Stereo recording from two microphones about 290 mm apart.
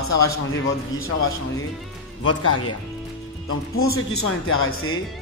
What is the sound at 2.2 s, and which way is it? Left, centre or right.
A man's voice, left.